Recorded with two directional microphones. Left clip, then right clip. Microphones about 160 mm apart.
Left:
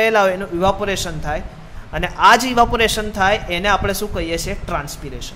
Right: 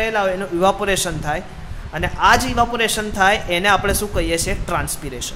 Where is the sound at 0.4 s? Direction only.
5° left (ahead or behind).